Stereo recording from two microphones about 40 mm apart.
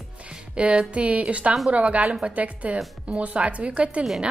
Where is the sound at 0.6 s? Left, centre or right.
Right.